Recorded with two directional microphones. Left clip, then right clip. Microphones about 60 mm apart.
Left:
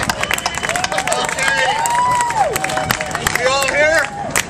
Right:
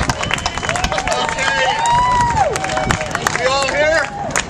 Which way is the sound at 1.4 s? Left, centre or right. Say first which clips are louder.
Left 1 dB; centre.